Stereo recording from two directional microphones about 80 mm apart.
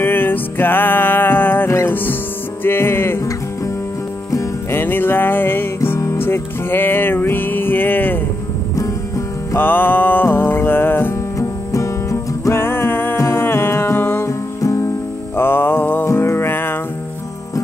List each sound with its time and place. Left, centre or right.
0.0 s music: left
4.3 s music: left
4.7 s music: left
9.6 s music: left
11.3 s music: left
14.6 s music: left
15.3 s music: left